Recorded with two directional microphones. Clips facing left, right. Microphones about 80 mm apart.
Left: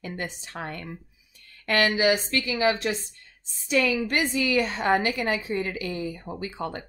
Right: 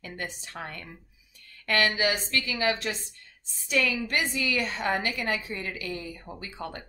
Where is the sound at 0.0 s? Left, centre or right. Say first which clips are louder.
Left 3 dB; left.